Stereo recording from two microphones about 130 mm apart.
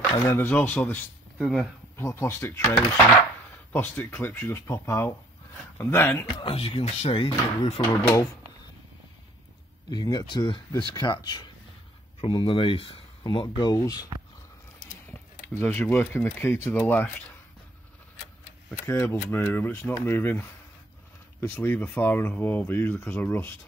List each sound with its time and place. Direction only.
0.2 s speech: 15° left (ahead or behind)
1.4 s speech: centre (ahead or behind)
2.0 s speech: 20° left (ahead or behind)
3.7 s speech: 15° left (ahead or behind)
6.4 s speech: 40° left (ahead or behind)
7.8 s speech: 20° left (ahead or behind)
9.8 s speech: 35° left (ahead or behind)
14.9 s a sound: 20° left (ahead or behind)
15.6 s speech: 10° left (ahead or behind)
18.9 s speech: 20° left (ahead or behind)